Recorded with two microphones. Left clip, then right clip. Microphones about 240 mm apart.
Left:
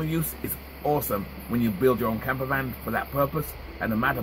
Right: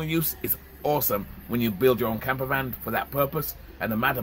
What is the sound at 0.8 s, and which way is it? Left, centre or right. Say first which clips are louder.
Speech: right 1 dB; centre.